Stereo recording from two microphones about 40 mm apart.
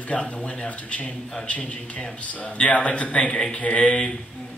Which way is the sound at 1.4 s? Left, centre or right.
Left.